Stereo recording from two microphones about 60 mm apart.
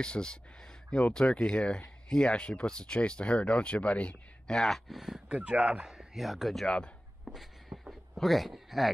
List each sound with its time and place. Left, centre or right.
0.0 s speech: centre
4.6 s speech: centre
5.3 s speech: centre
7.7 s a sound: right
8.1 s speech: centre